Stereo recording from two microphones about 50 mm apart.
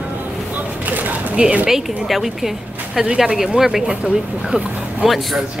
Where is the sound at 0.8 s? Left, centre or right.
Right.